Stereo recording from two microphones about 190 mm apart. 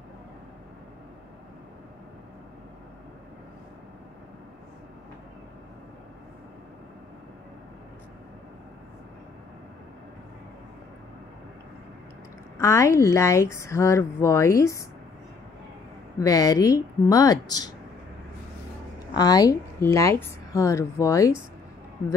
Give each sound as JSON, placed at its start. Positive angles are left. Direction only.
{"t": 12.5, "sound": "a woman's voice", "side_deg": 15}
{"t": 16.2, "sound": "a woman's voice", "side_deg": 20}
{"t": 19.1, "sound": "a woman's voice", "side_deg": 20}